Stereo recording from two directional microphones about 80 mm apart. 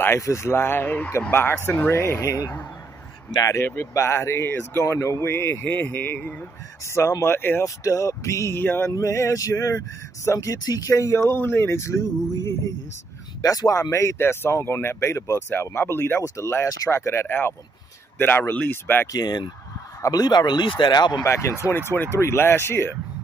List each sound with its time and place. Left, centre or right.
0.2 s speech: left
3.5 s speech: left
6.9 s speech: left
7.6 s speech: left
8.9 s speech: left
10.6 s speech: left
16.6 s speech: left
19.1 s a man's voice: left
21.2 s speech: left